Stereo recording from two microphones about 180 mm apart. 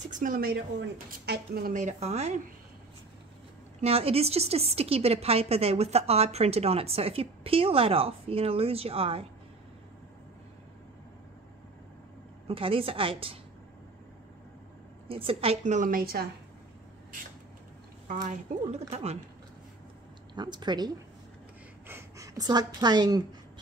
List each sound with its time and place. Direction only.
0.1 s a woman's voice: 50° right (ahead or behind); by 1.7 s 65° right (ahead or behind)
1.7 s a woman's voice: 40° right (ahead or behind)
3.8 s a woman's voice: 35° right (ahead or behind)
12.4 s a woman's voice: 30° right (ahead or behind)
15.0 s a woman's voice: 30° right (ahead or behind); by 16.3 s 55° right (ahead or behind)
18.2 s a woman's voice: 40° right (ahead or behind)
20.3 s a woman's voice: 25° right (ahead or behind)